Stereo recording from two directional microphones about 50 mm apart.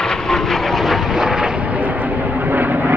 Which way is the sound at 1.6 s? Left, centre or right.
Right.